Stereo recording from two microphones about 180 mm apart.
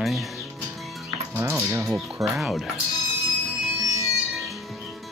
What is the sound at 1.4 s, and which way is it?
Speech, 15° right (ahead or behind).